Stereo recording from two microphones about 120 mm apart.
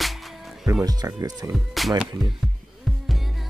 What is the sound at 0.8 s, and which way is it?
Speech, 30° right (ahead or behind).